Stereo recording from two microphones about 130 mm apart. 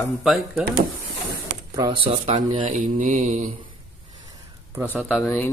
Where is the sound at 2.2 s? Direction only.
60° right (ahead or behind).